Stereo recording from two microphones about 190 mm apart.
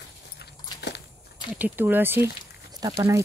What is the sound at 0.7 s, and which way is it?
Crushing, 65° left (ahead or behind).